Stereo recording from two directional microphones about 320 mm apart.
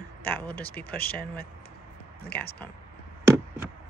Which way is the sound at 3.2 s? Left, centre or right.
Centre.